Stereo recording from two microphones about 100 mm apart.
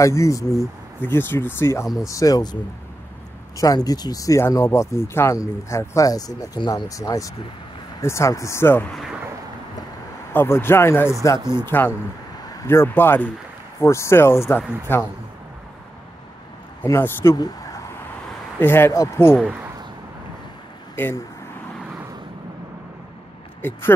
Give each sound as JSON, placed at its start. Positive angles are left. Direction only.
{"t": 0.0, "sound": "speech", "side_deg": 30}
{"t": 3.5, "sound": "speech", "side_deg": 40}
{"t": 10.3, "sound": "speech", "side_deg": 25}
{"t": 11.3, "sound": "speech", "side_deg": -45}
{"t": 11.6, "sound": "speech", "side_deg": 20}
{"t": 16.8, "sound": "speech", "side_deg": 25}
{"t": 17.4, "sound": "a sound", "side_deg": 35}
{"t": 18.6, "sound": "speech", "side_deg": 20}
{"t": 20.9, "sound": "speech", "side_deg": 20}